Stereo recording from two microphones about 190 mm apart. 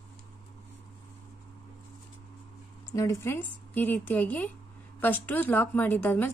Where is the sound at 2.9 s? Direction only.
15° left (ahead or behind).